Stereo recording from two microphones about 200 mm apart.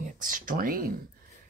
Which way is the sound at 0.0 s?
40° right (ahead or behind).